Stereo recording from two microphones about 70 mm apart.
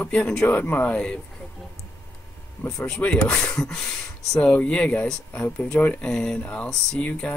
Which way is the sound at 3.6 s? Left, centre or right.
Centre.